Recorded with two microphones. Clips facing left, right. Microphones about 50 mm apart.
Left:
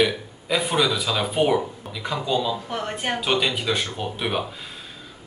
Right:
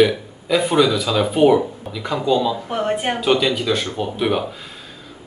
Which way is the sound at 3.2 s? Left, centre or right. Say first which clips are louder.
Right 5 dB; centre.